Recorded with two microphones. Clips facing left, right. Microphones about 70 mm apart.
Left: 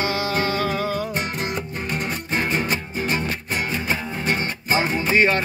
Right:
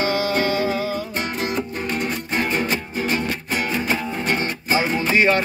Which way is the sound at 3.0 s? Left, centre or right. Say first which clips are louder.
Right 3 dB; centre.